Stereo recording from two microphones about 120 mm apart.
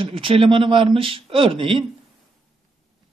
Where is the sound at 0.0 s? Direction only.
50° right (ahead or behind).